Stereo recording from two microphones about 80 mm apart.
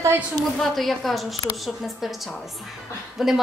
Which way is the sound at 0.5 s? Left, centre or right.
Centre.